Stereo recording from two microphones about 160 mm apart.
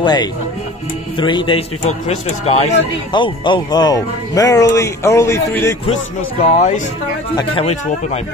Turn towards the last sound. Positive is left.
turn(degrees=35)  # may be behind; listen again after turning